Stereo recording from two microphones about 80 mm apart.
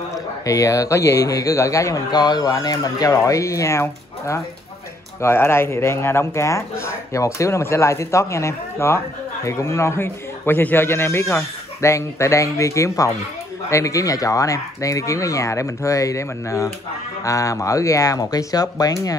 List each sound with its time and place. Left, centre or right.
0.5 s speech: left
2.0 s speech: left